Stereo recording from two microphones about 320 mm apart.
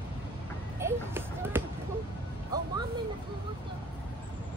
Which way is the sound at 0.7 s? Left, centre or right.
Centre.